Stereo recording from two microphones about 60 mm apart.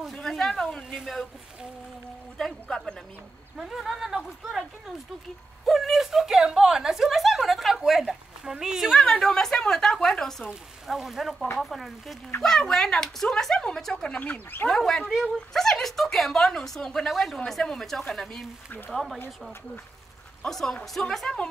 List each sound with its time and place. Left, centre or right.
0.1 s speech: centre
0.9 s a woman's voice: centre
2.3 s speech: centre
3.5 s a woman's voice: centre
9.0 s speech: centre
10.5 s a woman's voice: centre
14.2 s speech: left
14.7 s a woman's voice: centre
20.4 s speech: centre